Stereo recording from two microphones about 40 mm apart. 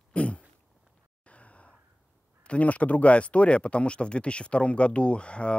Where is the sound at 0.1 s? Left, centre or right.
Left.